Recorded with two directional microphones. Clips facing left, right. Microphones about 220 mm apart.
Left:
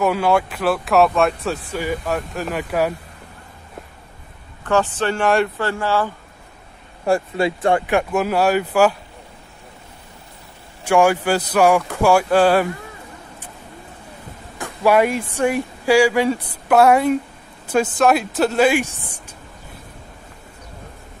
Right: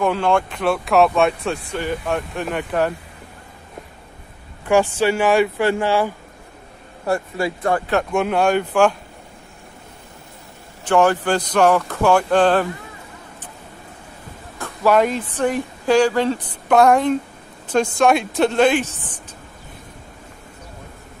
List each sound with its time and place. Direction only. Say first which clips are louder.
0.0 s speech: left 1 dB; 5° left (ahead or behind)
4.6 s speech: right 3 dB; 10° right (ahead or behind)
5.6 s speech: right 3 dB; 15° right (ahead or behind)
7.1 s speech: left 3 dB; 25° left (ahead or behind)
7.9 s speech: even; 5° left (ahead or behind)
10.8 s speech: left 1 dB; 10° left (ahead or behind)
14.6 s speech: left 1 dB; 10° left (ahead or behind)